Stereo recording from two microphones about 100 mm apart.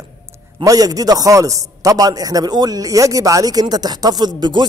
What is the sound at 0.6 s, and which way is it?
Music, 40° right (ahead or behind).